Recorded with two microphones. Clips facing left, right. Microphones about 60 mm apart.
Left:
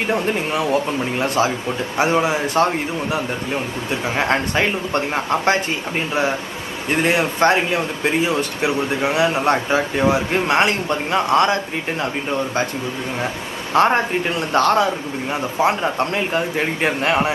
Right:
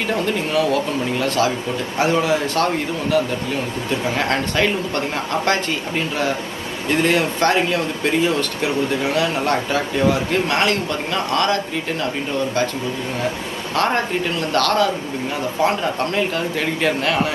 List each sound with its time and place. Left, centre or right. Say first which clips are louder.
0.0 s speech: left 1 dB; left
6.9 s speech: even; left
13.7 s speech: left 4 dB; left